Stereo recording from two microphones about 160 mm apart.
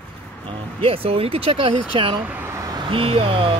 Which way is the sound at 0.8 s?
35° right (ahead or behind).